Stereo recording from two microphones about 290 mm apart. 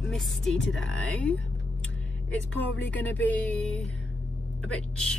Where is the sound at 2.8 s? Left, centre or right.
Centre.